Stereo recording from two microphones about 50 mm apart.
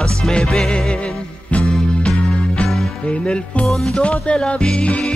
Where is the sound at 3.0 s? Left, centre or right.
Left.